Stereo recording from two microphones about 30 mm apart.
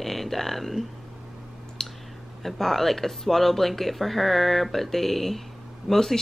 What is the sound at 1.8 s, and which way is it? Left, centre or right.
Clicking, centre.